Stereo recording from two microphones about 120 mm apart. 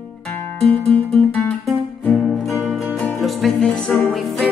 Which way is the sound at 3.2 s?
Centre (ahead or behind).